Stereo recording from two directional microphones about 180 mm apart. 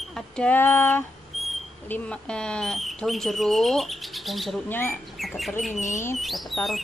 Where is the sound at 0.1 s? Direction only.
5° left (ahead or behind).